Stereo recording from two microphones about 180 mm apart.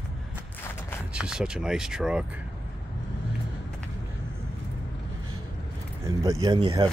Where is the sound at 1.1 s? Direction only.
5° right (ahead or behind).